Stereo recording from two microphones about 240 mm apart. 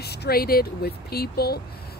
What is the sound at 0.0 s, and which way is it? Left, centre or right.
Speech, left.